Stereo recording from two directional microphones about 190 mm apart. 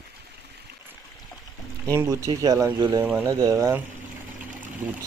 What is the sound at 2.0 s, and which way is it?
Speech, 20° right (ahead or behind).